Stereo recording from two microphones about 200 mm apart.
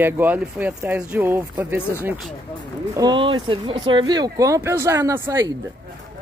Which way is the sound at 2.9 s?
20° right (ahead or behind).